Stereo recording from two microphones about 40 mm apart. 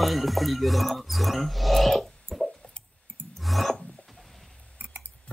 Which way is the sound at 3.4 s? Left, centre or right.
Centre.